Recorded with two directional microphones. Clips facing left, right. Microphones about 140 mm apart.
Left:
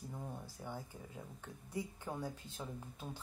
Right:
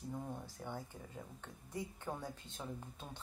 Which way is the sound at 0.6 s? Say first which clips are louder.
Even; 5° left (ahead or behind).